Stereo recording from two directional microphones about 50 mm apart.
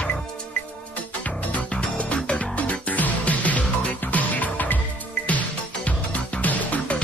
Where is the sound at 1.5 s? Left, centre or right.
Left.